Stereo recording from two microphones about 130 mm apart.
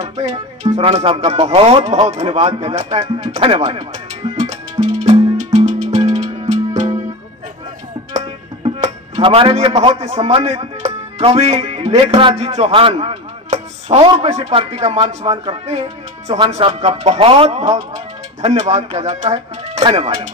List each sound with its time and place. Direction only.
0.7 s speech: 55° right (ahead or behind)
4.4 s music: 55° right (ahead or behind)
8.6 s a man's voice: 40° right (ahead or behind)
12.4 s speech: 55° right (ahead or behind)
19.8 s speech: 40° right (ahead or behind)